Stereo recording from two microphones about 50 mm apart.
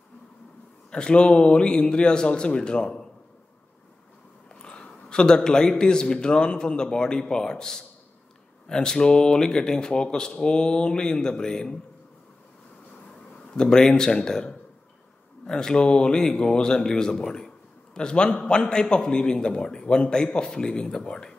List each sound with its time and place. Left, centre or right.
0.9 s speech: centre
4.5 s a man's voice: centre
13.5 s speech: centre